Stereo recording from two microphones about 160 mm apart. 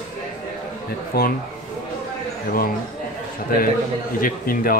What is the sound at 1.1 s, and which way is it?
Speech, 75° left (ahead or behind).